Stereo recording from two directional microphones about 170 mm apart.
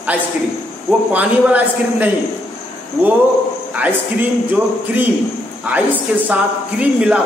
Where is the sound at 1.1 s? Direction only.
10° right (ahead or behind).